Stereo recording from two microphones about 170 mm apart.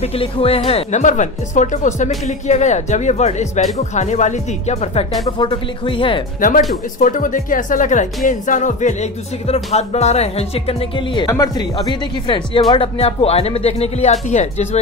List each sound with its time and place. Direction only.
0.0 s a woman's voice: 35° left (ahead or behind)
5.4 s speech: 30° left (ahead or behind)
7.0 s a woman's voice: 50° left (ahead or behind); by 11.2 s 30° left (ahead or behind)
11.2 s speech: 20° left (ahead or behind)
11.7 s speech: 30° left (ahead or behind)